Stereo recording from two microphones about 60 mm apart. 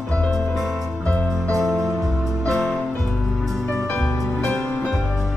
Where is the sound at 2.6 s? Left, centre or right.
Centre.